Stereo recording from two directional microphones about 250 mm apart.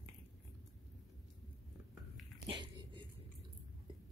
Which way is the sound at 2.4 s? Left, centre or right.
Centre.